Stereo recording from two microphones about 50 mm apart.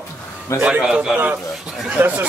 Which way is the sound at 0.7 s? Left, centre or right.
Right.